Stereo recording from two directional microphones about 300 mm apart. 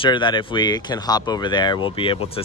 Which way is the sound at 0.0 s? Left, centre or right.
Centre.